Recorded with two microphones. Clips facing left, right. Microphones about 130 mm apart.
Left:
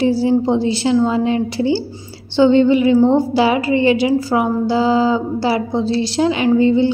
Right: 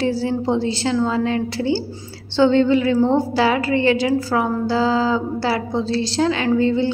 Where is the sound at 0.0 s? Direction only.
15° left (ahead or behind).